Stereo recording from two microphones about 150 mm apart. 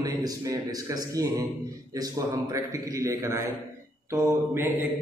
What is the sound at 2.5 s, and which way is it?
A man's voice, 20° right (ahead or behind).